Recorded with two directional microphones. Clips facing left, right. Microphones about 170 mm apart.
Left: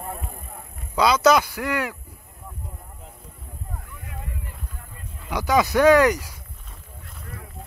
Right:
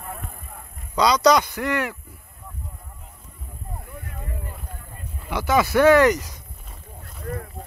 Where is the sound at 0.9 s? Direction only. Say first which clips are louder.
Even; 5° left (ahead or behind).